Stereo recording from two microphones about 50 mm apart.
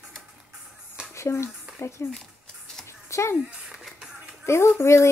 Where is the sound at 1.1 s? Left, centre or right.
Left.